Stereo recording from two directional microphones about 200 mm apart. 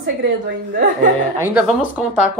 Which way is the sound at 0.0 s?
60° right (ahead or behind).